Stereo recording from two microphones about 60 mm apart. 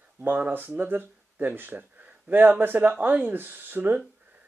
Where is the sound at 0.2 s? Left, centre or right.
Right.